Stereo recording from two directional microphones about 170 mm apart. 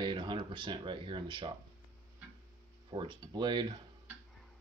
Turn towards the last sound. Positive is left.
turn(degrees=-25)  # may be behind; listen again after turning